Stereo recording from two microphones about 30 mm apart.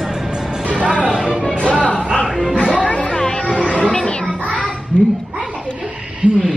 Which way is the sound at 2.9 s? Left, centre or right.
Left.